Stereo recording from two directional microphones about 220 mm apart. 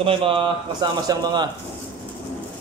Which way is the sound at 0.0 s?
25° right (ahead or behind).